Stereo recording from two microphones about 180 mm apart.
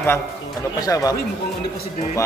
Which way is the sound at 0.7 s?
20° left (ahead or behind).